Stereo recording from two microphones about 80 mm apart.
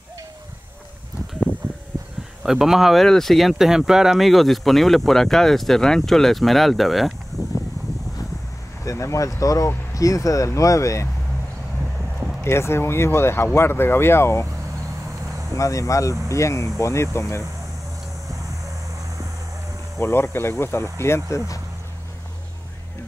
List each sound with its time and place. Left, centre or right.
2.4 s speech: centre
8.8 s speech: left
12.4 s speech: left
15.5 s speech: left
20.0 s speech: left